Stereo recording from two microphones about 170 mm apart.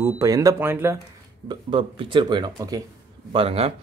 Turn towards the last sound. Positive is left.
turn(degrees=-35)  # may be behind; listen again after turning